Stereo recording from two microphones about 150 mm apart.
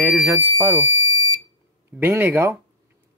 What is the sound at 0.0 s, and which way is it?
Fire alarm, 15° right (ahead or behind).